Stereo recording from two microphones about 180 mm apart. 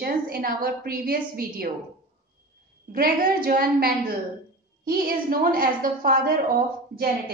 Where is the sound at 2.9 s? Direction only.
50° right (ahead or behind).